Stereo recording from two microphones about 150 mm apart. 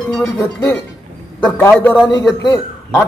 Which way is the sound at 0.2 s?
15° left (ahead or behind).